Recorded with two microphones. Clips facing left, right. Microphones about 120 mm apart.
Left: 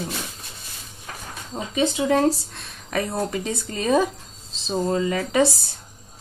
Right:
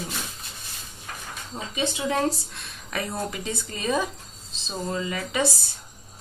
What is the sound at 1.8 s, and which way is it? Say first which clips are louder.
Speech: left 6 dB; 45° left (ahead or behind).